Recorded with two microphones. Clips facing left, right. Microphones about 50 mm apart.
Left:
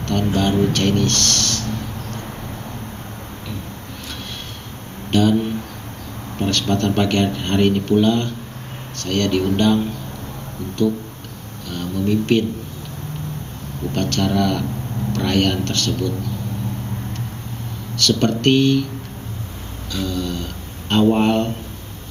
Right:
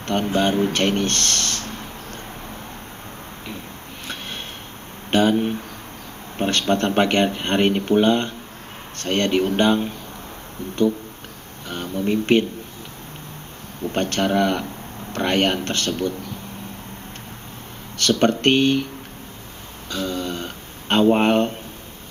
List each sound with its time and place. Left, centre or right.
0.0 s speech: right
5.1 s speech: right
11.7 s speech: right
13.9 s speech: right
17.9 s speech: right
19.9 s speech: right